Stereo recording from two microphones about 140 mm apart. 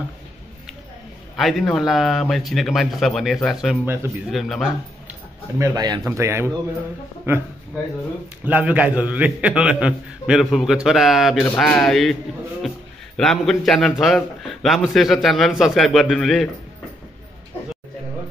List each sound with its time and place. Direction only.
1.3 s a man's voice: centre (ahead or behind)
3.8 s speech: 15° right (ahead or behind)
4.3 s a man's voice: centre (ahead or behind)
5.6 s speech: 30° right (ahead or behind)
6.0 s speech: 20° right (ahead or behind)
8.5 s a man's voice: 10° right (ahead or behind)